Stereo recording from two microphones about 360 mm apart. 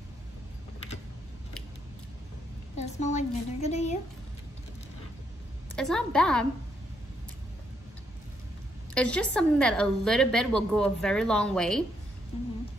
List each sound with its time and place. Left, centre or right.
2.8 s a sound: centre
5.8 s a woman's voice: centre
8.9 s a woman's voice: centre